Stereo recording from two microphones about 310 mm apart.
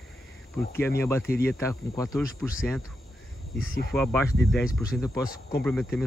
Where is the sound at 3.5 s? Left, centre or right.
Left.